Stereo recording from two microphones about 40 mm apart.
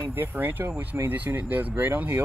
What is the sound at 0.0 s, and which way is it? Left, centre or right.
Speech, right.